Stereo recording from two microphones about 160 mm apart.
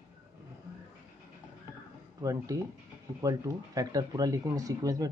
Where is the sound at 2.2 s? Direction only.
20° right (ahead or behind).